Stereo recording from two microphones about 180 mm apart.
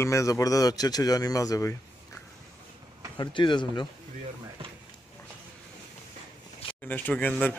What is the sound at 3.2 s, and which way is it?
Speech, 25° left (ahead or behind).